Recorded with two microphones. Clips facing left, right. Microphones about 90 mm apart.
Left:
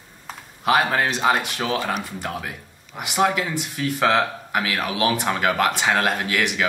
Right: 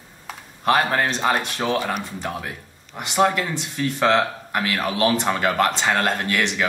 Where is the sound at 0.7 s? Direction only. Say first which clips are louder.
Even; 5° left (ahead or behind).